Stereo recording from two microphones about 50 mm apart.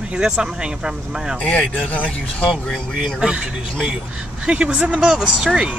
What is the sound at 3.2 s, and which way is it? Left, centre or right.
Speech, centre.